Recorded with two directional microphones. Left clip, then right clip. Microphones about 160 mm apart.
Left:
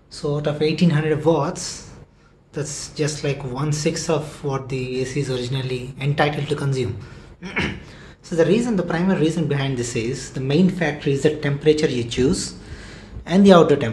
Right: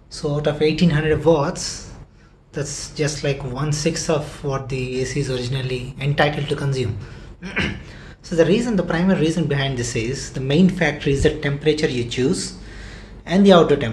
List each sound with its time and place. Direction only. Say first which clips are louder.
0.1 s speech: right 2 dB; centre (ahead or behind)
7.4 s a sound: right 1 dB; 15° left (ahead or behind)
8.3 s speech: right 1 dB; 5° left (ahead or behind)